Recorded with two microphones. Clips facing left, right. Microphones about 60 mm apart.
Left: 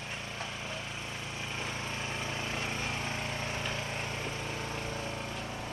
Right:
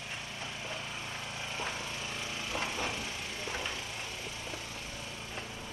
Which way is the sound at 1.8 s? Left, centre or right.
Left.